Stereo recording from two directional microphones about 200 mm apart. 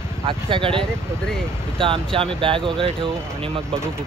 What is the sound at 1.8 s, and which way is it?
Speech, 25° right (ahead or behind).